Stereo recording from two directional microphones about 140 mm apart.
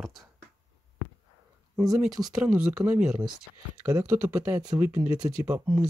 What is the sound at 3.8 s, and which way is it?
Speech, 20° right (ahead or behind).